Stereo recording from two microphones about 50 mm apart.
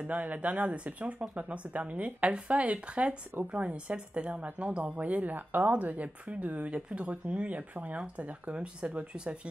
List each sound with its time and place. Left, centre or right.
0.0 s a woman's voice: right